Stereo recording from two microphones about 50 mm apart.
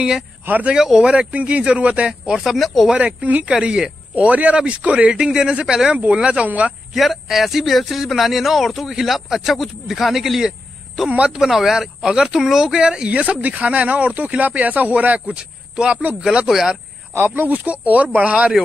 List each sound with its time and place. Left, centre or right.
0.7 s speech: centre
1.1 s speech: right
2.4 s speech: centre
2.9 s speech: right
3.5 s speech: centre
4.1 s speech: right
6.4 s speech: right
6.9 s speech: centre
11.1 s speech: right
11.4 s speech: centre; by 15.1 s right
15.1 s speech: centre
17.1 s speech: right
17.5 s speech: right